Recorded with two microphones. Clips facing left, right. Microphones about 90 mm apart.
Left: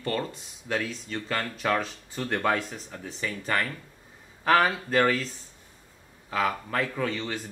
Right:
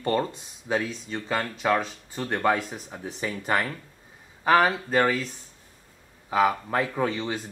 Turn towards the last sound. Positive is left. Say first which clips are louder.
# right 3 dB
turn(degrees=-15)  # may be behind; listen again after turning